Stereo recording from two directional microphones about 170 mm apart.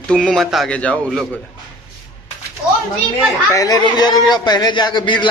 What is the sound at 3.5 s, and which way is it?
A man's voice, 20° left (ahead or behind).